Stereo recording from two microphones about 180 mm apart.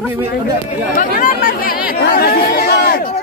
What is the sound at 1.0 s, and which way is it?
Speech, 50° left (ahead or behind).